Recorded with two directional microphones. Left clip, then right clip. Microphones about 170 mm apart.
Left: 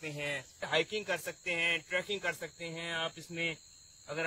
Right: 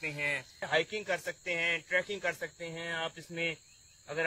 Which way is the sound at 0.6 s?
65° left (ahead or behind).